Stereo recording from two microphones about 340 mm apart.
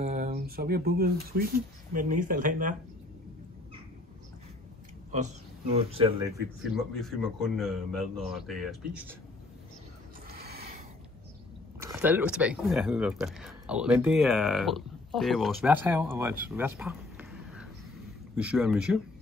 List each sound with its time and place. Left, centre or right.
0.0 s speech: right
5.8 s speech: centre
6.6 s a man's voice: centre
10.3 s a sound: right
11.8 s a man's voice: centre